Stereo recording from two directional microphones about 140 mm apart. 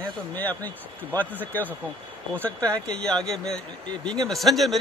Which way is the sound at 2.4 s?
10° left (ahead or behind).